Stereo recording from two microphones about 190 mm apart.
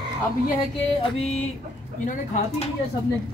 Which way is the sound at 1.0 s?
35° left (ahead or behind).